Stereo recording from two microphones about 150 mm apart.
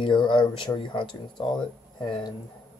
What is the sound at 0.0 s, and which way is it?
Speech, 35° left (ahead or behind).